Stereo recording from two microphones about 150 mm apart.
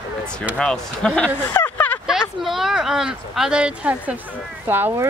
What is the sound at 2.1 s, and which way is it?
Speech, centre (ahead or behind).